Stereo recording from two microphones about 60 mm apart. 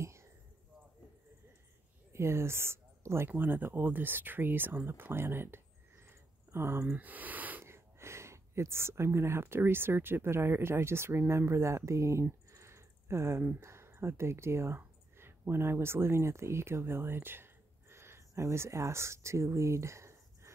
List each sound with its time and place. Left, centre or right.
0.0 s a sound: right
2.1 s speech: right
3.3 s speech: right
6.9 s speech: right
7.6 s speech: right